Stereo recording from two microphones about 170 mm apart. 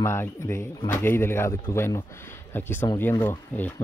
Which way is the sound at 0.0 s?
15° left (ahead or behind).